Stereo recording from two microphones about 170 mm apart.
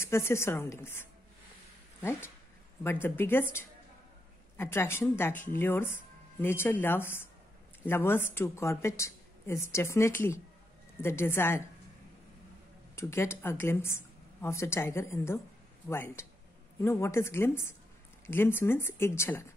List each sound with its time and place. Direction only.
0.0 s speech: 15° left (ahead or behind)
2.8 s speech: 15° left (ahead or behind)
12.9 s speech: 15° left (ahead or behind)